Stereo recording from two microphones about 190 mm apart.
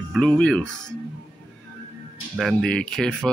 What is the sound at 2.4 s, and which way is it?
Speech, centre (ahead or behind).